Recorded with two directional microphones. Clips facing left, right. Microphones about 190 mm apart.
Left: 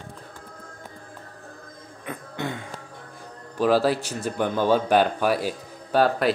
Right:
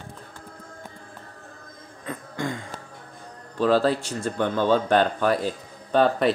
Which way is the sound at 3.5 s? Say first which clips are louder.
Even; 10° left (ahead or behind).